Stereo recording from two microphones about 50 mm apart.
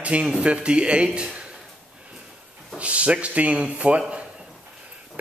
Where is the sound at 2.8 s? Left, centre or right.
Right.